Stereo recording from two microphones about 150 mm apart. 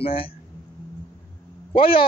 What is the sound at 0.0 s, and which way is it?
Speech, 40° left (ahead or behind).